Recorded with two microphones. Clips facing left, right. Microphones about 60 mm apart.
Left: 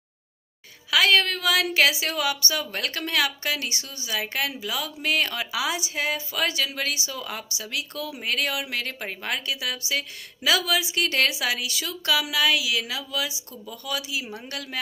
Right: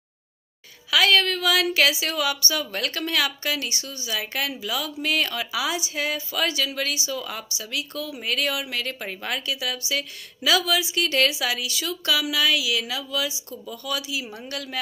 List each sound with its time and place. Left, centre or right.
0.8 s a woman's voice: left